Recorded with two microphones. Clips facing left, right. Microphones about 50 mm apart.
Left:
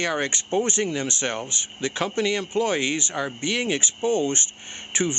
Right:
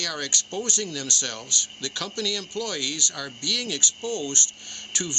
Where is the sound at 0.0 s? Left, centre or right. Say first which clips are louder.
Left 6 dB; left.